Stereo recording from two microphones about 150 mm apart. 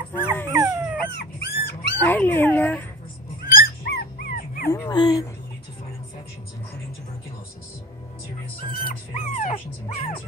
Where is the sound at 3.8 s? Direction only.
90° left.